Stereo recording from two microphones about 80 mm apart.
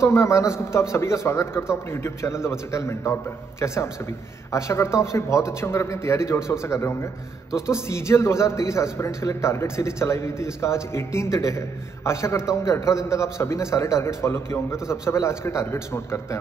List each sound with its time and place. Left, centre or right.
0.0 s a man's voice: left